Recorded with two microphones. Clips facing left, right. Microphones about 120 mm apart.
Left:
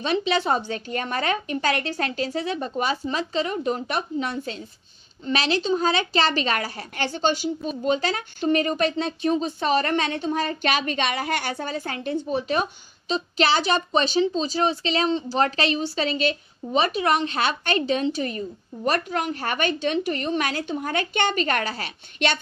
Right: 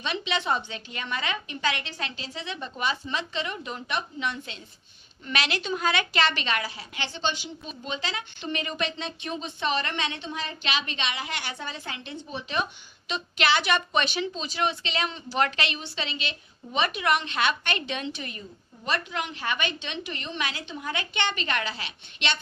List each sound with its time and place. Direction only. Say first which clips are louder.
0.0 s a woman's voice: left 7 dB; 40° left (ahead or behind)